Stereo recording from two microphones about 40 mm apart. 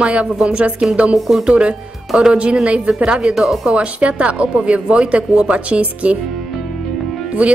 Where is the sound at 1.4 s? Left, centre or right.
Right.